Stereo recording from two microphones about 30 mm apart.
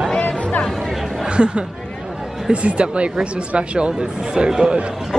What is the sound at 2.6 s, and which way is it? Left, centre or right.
Speech, right.